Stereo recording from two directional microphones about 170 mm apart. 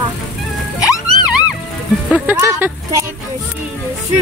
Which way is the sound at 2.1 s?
10° right (ahead or behind).